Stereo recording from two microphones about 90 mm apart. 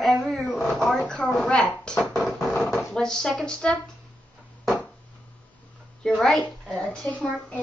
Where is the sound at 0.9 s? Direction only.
10° left (ahead or behind).